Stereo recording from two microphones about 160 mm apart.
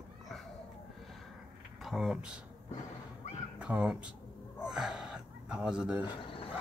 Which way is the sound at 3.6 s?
10° right (ahead or behind).